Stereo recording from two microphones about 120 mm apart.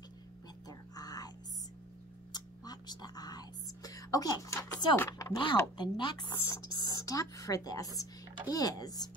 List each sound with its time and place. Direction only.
0.7 s whispering: 30° left (ahead or behind)
2.3 s whispering: 35° left (ahead or behind)
4.9 s speech: 20° left (ahead or behind)
5.3 s speech: 40° left (ahead or behind)